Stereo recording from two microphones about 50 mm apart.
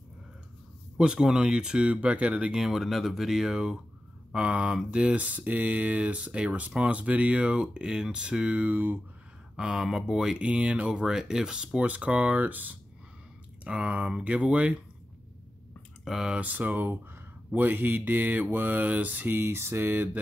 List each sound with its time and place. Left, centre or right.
0.9 s speech: centre
2.5 s speech: centre
4.3 s speech: right
9.6 s speech: centre
9.8 s speech: centre
10.3 s speech: right
11.1 s speech: centre
11.8 s speech: right
13.7 s speech: right
16.0 s speech: centre
16.3 s mantra: right
19.3 s a sound: right